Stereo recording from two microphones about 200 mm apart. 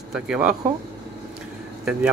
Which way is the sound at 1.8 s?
5° right (ahead or behind).